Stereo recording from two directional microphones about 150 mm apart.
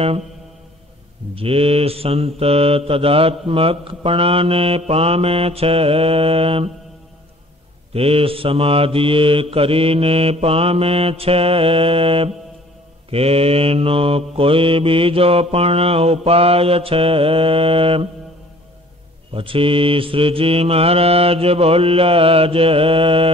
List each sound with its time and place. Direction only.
1.3 s mantra: 40° right (ahead or behind)
7.9 s mantra: 40° right (ahead or behind)
19.3 s mantra: 35° right (ahead or behind)